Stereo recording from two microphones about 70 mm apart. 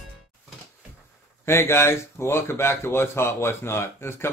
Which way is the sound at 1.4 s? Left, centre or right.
Left.